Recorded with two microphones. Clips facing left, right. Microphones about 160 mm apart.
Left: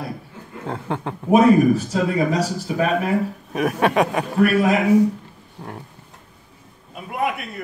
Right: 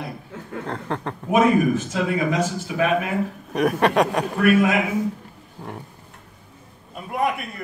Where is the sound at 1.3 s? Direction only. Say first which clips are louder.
Left 4 dB; 35° left (ahead or behind).